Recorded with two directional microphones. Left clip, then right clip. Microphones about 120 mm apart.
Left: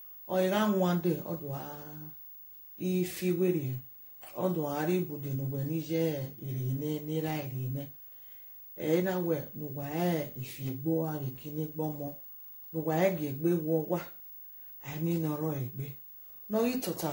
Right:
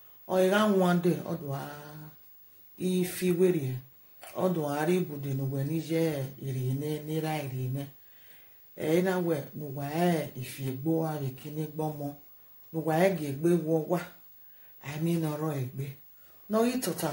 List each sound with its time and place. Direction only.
0.3 s speech: 25° right (ahead or behind)
2.8 s speech: 25° right (ahead or behind)